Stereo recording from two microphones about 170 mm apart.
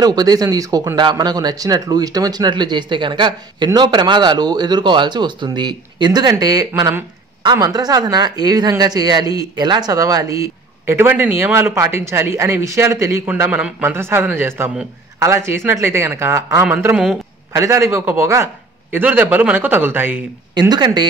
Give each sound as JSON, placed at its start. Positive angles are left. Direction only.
{"t": 0.0, "sound": "a man's voice", "side_deg": -25}
{"t": 16.9, "sound": "a man's voice", "side_deg": 0}
{"t": 17.5, "sound": "a man's voice", "side_deg": -15}
{"t": 20.5, "sound": "speech", "side_deg": -25}